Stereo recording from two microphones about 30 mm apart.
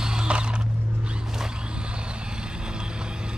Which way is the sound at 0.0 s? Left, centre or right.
Right.